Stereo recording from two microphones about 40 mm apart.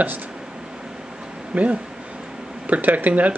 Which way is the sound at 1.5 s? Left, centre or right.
Right.